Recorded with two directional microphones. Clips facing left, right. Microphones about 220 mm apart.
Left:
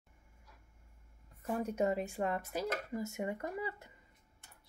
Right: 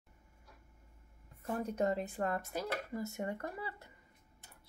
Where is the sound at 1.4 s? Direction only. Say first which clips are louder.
Left 1 dB; 10° left (ahead or behind).